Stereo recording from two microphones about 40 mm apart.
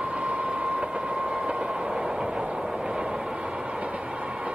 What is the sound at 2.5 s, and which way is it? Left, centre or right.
Vehicle, right.